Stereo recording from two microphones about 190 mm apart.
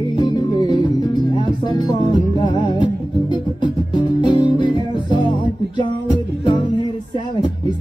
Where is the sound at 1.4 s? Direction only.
25° left (ahead or behind).